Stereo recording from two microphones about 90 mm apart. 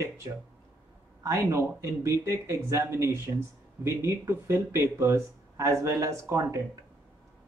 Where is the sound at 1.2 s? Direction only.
30° right (ahead or behind).